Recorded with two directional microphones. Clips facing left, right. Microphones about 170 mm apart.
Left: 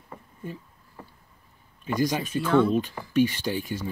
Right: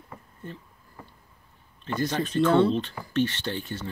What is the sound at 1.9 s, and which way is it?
Speech, 10° left (ahead or behind).